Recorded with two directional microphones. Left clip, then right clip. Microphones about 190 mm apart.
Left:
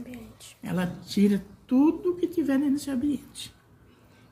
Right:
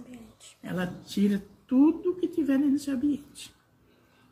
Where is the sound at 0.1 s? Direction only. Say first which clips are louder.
Left 4 dB; 30° left (ahead or behind).